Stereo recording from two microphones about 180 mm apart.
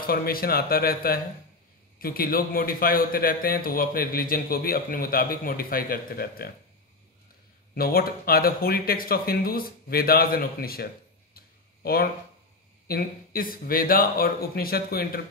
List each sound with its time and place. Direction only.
0.0 s a man's voice: 55° left (ahead or behind)
7.7 s a man's voice: 55° left (ahead or behind)
11.3 s a sound: 55° left (ahead or behind)
12.8 s a man's voice: 55° left (ahead or behind)